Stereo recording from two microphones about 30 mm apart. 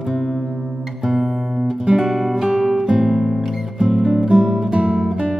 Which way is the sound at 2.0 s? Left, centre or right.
Centre.